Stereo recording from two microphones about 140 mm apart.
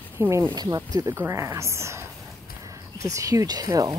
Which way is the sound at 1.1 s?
15° right (ahead or behind).